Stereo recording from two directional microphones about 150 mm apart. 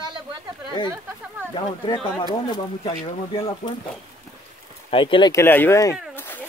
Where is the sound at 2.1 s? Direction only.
30° left (ahead or behind).